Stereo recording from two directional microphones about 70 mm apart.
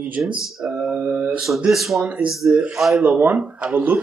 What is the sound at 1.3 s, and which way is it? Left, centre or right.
Speech, centre.